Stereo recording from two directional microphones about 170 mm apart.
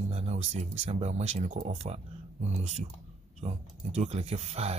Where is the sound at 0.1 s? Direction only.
40° right (ahead or behind).